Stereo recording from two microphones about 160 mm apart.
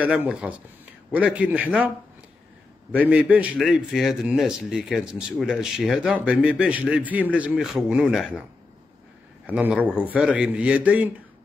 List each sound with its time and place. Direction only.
0.0 s a man's voice: 10° right (ahead or behind)
2.9 s a man's voice: 10° right (ahead or behind)
9.5 s a man's voice: 10° right (ahead or behind)